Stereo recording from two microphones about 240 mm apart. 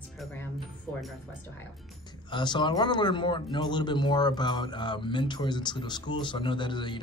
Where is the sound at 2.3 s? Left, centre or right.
Centre.